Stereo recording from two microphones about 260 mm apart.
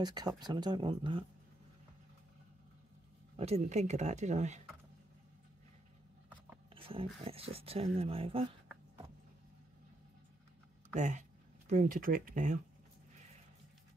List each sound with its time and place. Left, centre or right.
0.0 s speech: centre
3.3 s speech: right
6.7 s speech: right
11.0 s speech: right